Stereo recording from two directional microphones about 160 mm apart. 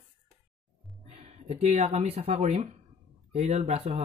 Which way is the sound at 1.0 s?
40° right (ahead or behind).